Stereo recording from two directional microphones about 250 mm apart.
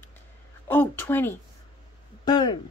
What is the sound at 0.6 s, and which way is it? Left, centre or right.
A woman's voice, centre.